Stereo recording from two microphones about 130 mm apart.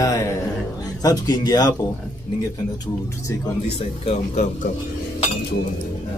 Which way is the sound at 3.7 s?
60° left (ahead or behind).